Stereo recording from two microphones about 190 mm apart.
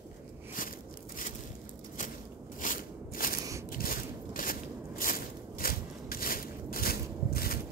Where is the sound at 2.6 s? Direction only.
45° left (ahead or behind).